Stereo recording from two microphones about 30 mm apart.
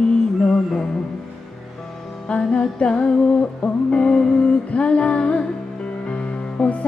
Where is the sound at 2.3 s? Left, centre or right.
Left.